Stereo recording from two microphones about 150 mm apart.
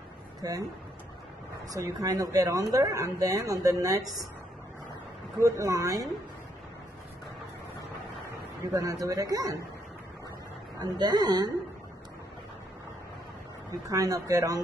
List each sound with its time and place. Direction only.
0.4 s speech: 25° right (ahead or behind)
1.7 s speech: 25° right (ahead or behind)
5.4 s speech: 25° right (ahead or behind)
8.7 s speech: 20° right (ahead or behind)
10.8 s speech: 25° right (ahead or behind)
13.7 s speech: 25° right (ahead or behind)